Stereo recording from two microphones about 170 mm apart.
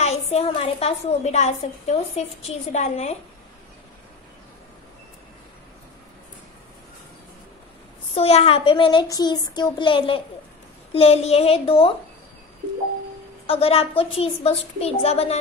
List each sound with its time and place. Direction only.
0.0 s a woman's voice: 40° left (ahead or behind)
8.1 s a child's voice: 35° left (ahead or behind)
13.5 s a woman's voice: 35° left (ahead or behind)